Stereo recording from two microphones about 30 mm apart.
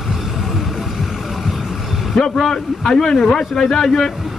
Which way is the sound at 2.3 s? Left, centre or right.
Centre.